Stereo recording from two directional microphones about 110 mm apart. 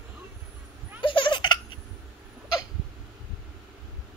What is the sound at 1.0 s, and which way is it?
Baby laughter, 50° left (ahead or behind).